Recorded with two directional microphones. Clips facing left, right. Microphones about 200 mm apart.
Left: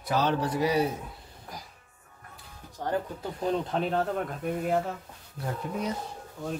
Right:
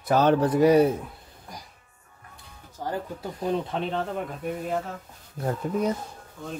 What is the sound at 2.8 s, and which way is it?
Speech, 5° right (ahead or behind).